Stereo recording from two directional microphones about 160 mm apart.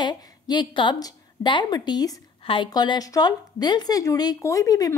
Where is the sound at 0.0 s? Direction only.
25° left (ahead or behind).